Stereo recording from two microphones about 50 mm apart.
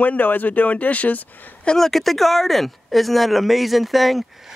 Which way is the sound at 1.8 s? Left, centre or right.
Centre.